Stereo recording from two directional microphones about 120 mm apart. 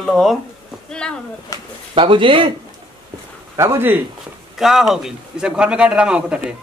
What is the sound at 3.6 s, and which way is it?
Speech, 20° right (ahead or behind).